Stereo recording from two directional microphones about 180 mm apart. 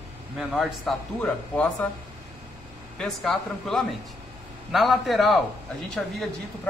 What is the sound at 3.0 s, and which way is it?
A man's voice, 5° left (ahead or behind).